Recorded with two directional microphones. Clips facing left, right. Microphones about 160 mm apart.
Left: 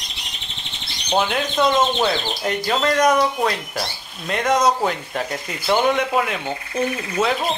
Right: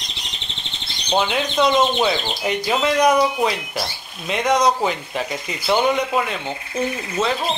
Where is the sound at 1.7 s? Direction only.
10° right (ahead or behind).